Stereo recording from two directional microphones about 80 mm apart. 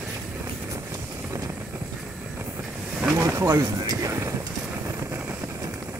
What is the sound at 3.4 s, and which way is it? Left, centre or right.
Speech, right.